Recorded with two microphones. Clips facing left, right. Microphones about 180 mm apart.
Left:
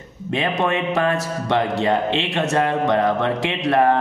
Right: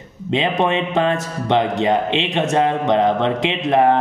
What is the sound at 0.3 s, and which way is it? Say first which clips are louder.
A man's voice: right 3 dB; 20° right (ahead or behind).